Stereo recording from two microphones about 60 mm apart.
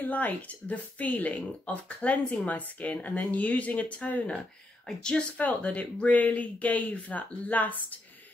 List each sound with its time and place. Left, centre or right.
0.0 s speech: left
4.8 s speech: centre
5.4 s speech: left